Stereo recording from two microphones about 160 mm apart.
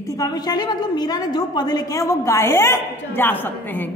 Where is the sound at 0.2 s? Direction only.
25° left (ahead or behind).